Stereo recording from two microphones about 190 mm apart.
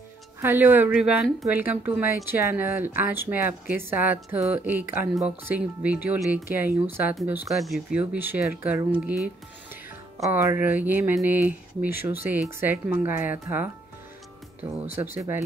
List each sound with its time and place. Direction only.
0.4 s speech: 10° right (ahead or behind)